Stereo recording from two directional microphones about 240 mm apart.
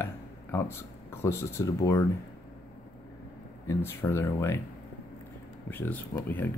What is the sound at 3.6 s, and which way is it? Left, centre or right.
Speech, centre.